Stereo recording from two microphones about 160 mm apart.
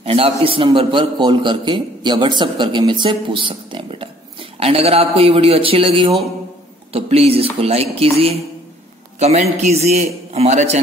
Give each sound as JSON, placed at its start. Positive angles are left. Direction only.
{"t": 0.0, "sound": "a man's voice", "side_deg": -35}